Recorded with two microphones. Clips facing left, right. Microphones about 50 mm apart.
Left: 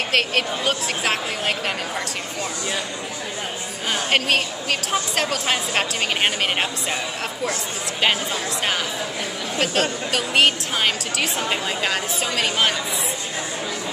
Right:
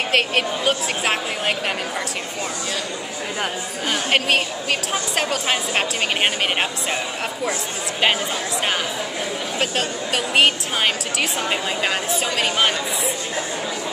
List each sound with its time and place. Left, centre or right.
0.1 s a woman's voice: centre
4.1 s a woman's voice: centre
9.6 s a woman's voice: centre